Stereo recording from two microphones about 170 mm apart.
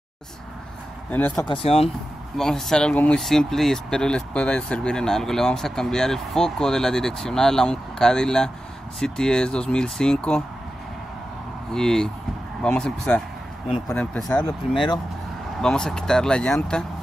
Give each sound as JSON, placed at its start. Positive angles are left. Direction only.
{"t": 1.1, "sound": "speech", "side_deg": 10}
{"t": 1.4, "sound": "speech", "side_deg": 30}
{"t": 2.3, "sound": "speech", "side_deg": 0}
{"t": 11.7, "sound": "speech", "side_deg": 5}
{"t": 14.7, "sound": "speech", "side_deg": 30}
{"t": 15.6, "sound": "speech", "side_deg": 5}